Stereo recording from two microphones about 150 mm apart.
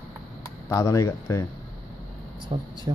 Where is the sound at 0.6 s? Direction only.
20° left (ahead or behind).